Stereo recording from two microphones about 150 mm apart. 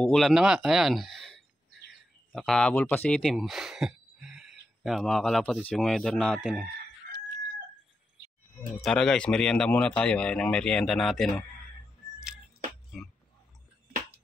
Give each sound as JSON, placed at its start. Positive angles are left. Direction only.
{"t": 0.0, "sound": "speech", "side_deg": 0}
{"t": 8.8, "sound": "speech", "side_deg": 5}